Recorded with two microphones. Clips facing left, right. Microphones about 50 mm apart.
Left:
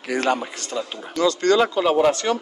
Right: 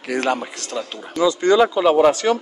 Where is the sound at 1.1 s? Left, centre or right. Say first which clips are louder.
Right 2 dB; centre.